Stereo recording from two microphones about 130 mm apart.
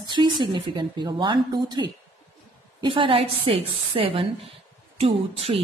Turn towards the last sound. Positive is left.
turn(degrees=-50)  # may be behind; listen again after turning